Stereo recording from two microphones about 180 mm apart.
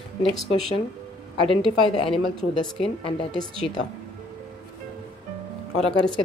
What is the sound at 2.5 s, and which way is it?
Speech, 30° left (ahead or behind).